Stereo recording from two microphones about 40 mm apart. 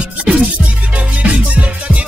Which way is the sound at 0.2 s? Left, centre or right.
Right.